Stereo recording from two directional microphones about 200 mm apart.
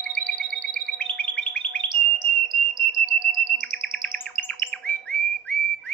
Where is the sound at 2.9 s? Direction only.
45° right (ahead or behind).